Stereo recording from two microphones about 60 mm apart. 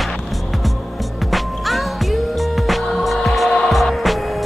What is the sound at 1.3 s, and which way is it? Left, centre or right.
Music, centre.